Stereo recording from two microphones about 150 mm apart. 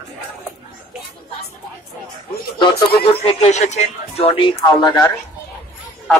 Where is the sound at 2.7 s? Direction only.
90° left.